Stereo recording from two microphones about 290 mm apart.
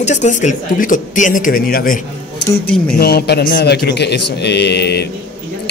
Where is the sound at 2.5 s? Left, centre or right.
Centre.